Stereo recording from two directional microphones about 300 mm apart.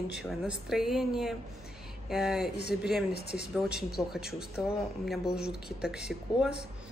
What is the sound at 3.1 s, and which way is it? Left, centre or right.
Speech, left.